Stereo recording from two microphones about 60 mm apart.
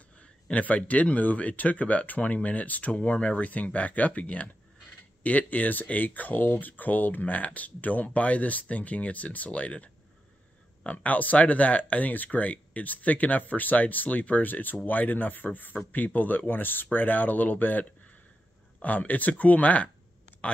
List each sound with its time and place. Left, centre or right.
0.2 s speech: left